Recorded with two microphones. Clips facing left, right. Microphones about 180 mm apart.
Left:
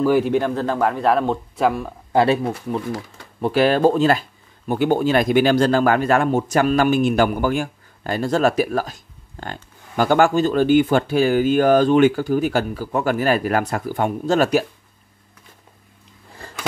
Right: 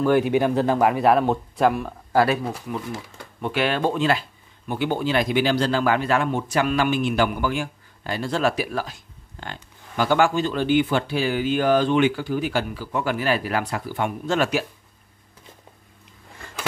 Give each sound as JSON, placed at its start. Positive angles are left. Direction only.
{"t": 0.0, "sound": "speech", "side_deg": 5}
{"t": 0.3, "sound": "speech", "side_deg": -10}
{"t": 2.1, "sound": "speech", "side_deg": 25}
{"t": 3.3, "sound": "speech", "side_deg": 35}
{"t": 16.4, "sound": "a sound", "side_deg": 35}